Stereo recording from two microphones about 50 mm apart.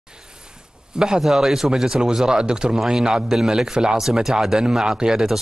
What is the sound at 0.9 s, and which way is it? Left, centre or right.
A man's voice, centre.